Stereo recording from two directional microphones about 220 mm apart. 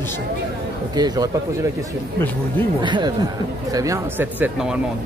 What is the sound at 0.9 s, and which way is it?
Speech, 20° right (ahead or behind).